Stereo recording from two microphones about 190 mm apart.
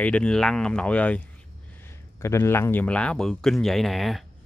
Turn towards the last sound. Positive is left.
turn(degrees=0)  # may be behind; listen again after turning